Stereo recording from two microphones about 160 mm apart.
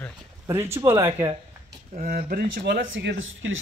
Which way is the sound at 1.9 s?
65° right (ahead or behind).